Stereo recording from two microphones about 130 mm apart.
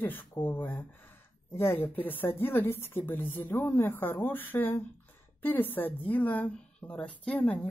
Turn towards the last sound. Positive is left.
turn(degrees=10)  # may be behind; listen again after turning